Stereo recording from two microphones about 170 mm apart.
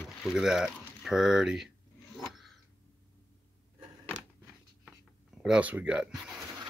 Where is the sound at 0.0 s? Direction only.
Centre (ahead or behind).